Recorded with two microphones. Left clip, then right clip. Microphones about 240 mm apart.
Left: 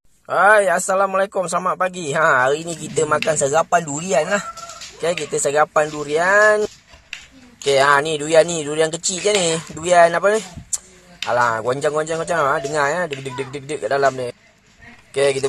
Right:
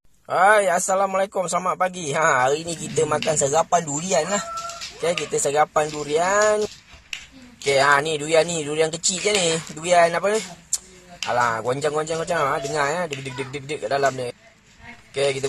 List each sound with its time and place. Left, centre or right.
0.3 s a man's voice: centre